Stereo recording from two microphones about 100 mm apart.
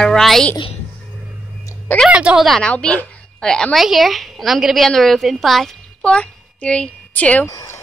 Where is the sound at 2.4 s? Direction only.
5° left (ahead or behind).